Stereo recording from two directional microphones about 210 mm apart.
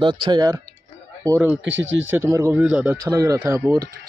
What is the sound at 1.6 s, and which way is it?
Speech, 60° right (ahead or behind).